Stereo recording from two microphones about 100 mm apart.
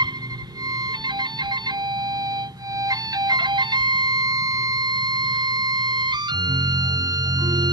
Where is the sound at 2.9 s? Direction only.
40° right (ahead or behind).